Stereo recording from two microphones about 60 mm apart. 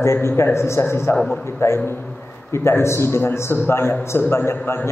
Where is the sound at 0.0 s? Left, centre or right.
Left.